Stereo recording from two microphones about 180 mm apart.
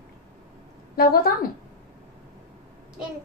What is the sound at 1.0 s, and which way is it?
Speech, 55° left (ahead or behind).